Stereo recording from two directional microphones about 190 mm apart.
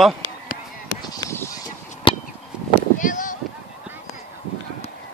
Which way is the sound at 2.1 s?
25° left (ahead or behind).